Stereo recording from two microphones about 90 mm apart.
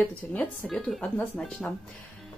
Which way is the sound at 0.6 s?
5° left (ahead or behind).